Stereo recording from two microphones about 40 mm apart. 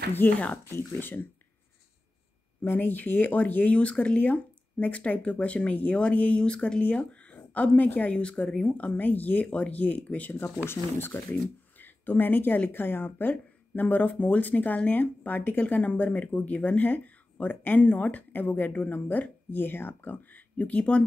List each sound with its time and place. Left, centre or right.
0.2 s speech: left
2.6 s speech: left
6.8 s speech: left
8.2 s speech: left
10.7 s speech: left
11.8 s speech: left